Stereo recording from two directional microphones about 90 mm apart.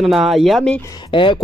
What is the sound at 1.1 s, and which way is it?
Speech, 65° left (ahead or behind).